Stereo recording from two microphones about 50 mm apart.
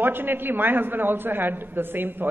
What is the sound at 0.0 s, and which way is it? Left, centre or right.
A man's voice, right.